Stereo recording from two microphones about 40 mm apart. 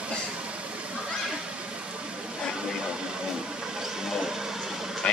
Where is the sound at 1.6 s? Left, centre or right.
Right; by 5.0 s centre.